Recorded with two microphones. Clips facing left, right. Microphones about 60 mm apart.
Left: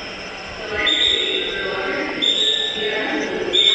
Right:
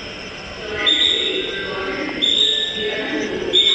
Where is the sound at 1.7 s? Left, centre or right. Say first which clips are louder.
Left 1 dB; left.